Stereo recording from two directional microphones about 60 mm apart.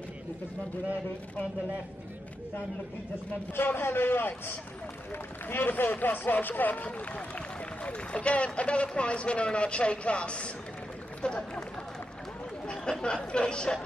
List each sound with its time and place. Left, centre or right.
3.5 s a man's voice: left; by 11.6 s centre
13.0 s speech: centre